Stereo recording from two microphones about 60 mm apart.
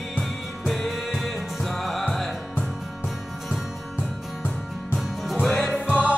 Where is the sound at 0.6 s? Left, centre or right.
Centre.